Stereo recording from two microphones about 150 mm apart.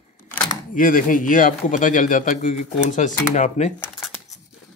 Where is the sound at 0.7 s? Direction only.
65° left (ahead or behind).